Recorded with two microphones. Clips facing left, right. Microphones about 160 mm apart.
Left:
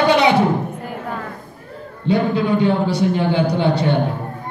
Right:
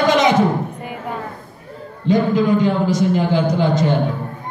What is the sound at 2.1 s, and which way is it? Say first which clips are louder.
Speech: right 2 dB; 40° right (ahead or behind).